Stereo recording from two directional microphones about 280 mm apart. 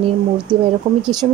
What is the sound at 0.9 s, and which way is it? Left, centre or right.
Speech, right.